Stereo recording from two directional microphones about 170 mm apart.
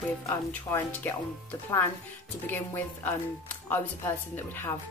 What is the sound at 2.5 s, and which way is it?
Speech, 10° left (ahead or behind).